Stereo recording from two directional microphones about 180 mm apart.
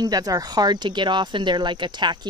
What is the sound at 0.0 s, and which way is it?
Speech, 20° right (ahead or behind).